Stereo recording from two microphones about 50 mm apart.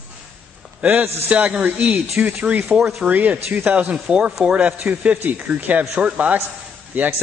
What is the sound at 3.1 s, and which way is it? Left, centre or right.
A man's voice, right.